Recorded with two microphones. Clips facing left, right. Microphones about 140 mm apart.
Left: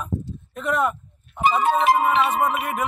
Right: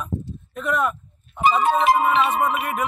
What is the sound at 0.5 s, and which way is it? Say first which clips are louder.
Honk: even; 15° left (ahead or behind).